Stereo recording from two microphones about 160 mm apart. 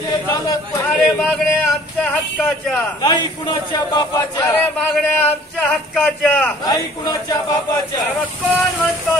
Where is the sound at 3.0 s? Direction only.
20° left (ahead or behind).